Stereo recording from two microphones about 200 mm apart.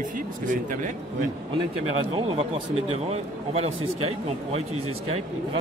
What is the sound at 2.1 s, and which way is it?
Speech, 30° right (ahead or behind).